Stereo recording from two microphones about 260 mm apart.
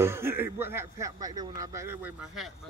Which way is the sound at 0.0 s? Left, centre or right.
Centre.